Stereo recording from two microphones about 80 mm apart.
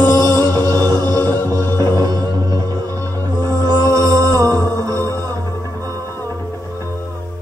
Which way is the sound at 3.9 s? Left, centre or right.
Right.